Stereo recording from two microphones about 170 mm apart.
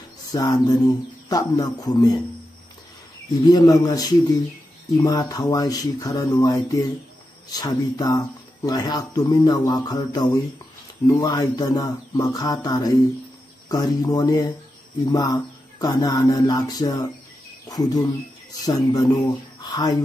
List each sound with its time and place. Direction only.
0.3 s speech: 20° left (ahead or behind)
3.4 s speech: 20° left (ahead or behind)